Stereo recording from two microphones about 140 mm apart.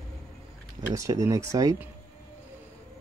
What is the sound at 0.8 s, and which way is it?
Speech, 20° right (ahead or behind).